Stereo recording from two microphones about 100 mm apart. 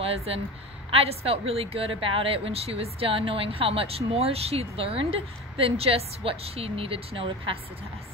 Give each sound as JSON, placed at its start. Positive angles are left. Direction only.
{"t": 0.0, "sound": "a woman's voice", "side_deg": -80}